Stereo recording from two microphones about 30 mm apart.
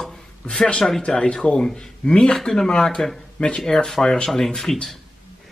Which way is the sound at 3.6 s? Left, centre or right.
Centre.